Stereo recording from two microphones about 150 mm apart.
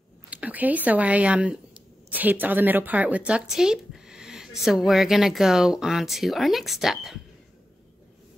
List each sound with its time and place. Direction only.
0.3 s a woman's voice: 10° right (ahead or behind)